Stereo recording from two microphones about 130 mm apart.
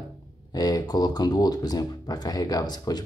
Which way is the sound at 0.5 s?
30° left (ahead or behind).